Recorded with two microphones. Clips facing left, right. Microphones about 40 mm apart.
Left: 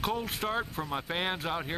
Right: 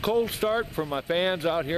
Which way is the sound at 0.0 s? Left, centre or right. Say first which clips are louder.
Right 7 dB; centre.